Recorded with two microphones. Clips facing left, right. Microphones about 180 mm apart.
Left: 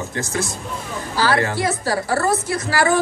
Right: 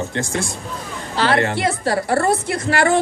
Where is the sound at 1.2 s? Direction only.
25° right (ahead or behind).